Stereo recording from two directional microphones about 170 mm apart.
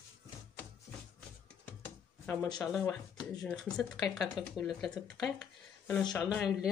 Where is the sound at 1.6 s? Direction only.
15° left (ahead or behind).